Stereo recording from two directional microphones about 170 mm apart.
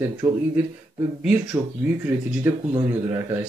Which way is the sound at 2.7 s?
15° right (ahead or behind).